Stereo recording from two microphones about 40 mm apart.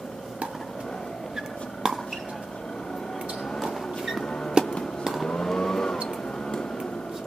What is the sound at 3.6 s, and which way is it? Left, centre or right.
Vehicle, centre.